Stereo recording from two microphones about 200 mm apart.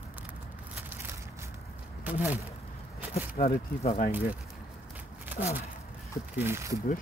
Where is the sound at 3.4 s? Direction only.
35° left (ahead or behind).